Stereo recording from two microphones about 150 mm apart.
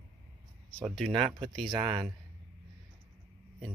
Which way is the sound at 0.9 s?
Centre (ahead or behind).